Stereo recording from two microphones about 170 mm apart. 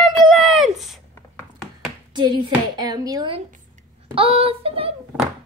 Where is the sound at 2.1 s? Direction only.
25° right (ahead or behind).